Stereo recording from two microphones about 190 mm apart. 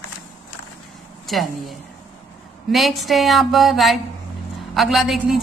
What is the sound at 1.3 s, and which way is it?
A woman's voice, centre (ahead or behind).